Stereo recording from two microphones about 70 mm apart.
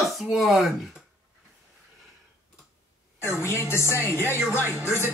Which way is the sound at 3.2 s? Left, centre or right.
Left.